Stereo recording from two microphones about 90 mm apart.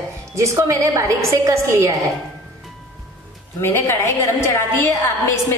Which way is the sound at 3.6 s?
30° left (ahead or behind).